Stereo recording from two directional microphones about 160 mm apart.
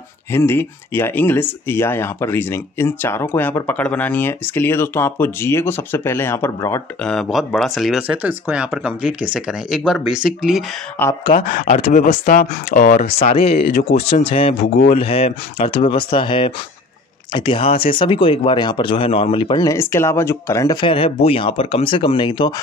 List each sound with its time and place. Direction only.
0.3 s speech: 15° left (ahead or behind)
7.0 s speech: 5° left (ahead or behind)
11.0 s speech: 15° left (ahead or behind)
11.3 s speech: 55° left (ahead or behind)
13.2 s speech: 40° left (ahead or behind)
13.6 s speech: 80° left
13.9 s speech: 40° left (ahead or behind)